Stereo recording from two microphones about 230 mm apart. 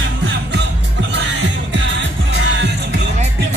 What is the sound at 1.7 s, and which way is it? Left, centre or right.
Music, right.